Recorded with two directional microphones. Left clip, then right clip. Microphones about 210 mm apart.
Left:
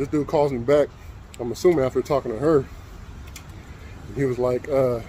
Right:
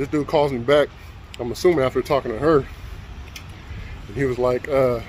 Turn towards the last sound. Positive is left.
turn(degrees=5)  # may be behind; listen again after turning